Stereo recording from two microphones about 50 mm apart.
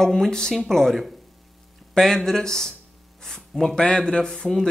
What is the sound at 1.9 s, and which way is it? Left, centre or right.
Speech, centre.